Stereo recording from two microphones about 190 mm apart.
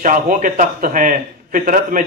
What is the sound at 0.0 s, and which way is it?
A man's voice, 45° right (ahead or behind).